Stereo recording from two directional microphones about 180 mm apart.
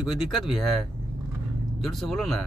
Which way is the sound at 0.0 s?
Centre (ahead or behind).